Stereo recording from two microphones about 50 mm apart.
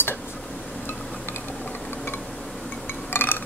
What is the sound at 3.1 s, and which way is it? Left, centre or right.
Chink, left.